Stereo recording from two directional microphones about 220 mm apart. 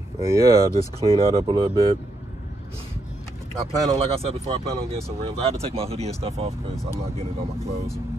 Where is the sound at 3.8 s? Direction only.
25° right (ahead or behind).